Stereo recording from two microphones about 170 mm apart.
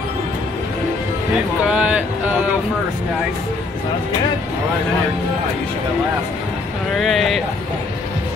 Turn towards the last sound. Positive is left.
turn(degrees=0)  # may be behind; listen again after turning